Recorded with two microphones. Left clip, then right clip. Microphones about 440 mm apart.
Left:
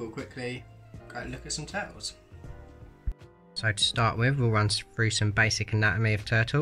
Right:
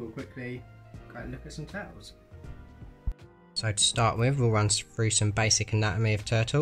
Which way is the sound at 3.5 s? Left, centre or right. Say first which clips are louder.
Left 1 dB; centre.